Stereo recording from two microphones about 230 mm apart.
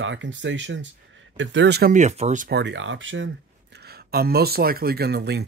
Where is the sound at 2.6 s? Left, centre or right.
Right.